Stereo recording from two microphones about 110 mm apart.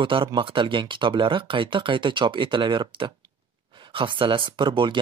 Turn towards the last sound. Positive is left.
turn(degrees=-45)  # may be behind; listen again after turning